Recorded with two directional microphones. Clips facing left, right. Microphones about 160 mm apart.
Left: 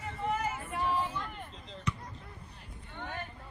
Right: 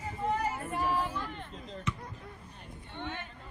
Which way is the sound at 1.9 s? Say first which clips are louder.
Left 1 dB; centre (ahead or behind).